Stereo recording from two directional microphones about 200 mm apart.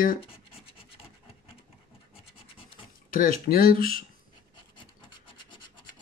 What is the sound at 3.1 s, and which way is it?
Speech, 45° left (ahead or behind).